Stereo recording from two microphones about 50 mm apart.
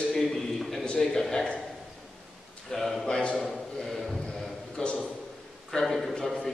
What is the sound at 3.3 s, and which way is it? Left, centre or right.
Speech, centre.